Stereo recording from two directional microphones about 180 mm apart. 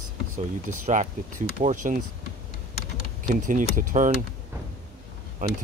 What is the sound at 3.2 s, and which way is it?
Speech, 45° right (ahead or behind).